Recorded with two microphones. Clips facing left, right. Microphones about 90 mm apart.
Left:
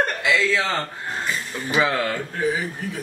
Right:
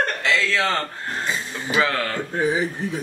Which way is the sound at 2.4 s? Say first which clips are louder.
Right 4 dB; 20° right (ahead or behind).